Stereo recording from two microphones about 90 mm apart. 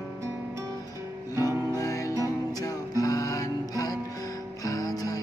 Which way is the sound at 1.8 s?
35° left (ahead or behind).